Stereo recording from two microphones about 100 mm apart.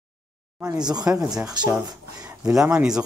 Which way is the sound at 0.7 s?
45° right (ahead or behind).